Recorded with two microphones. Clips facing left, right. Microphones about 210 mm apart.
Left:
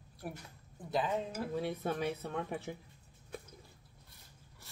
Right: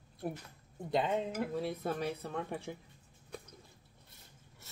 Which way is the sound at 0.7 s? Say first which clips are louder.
Right 2 dB; 25° right (ahead or behind).